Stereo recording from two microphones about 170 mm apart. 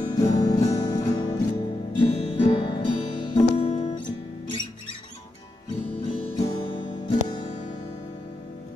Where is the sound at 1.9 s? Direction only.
35° left (ahead or behind).